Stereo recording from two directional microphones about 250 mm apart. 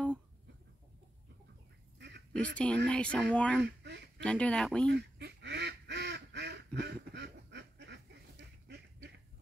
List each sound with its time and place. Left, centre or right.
2.0 s duck: right
2.3 s speech: centre
3.6 s a sound: right
4.2 s speech: centre
4.8 s duck: right